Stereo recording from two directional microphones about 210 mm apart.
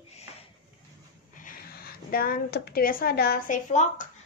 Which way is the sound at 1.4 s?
45° left (ahead or behind).